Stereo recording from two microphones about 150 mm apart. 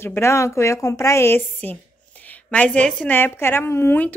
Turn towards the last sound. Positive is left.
turn(degrees=15)  # may be behind; listen again after turning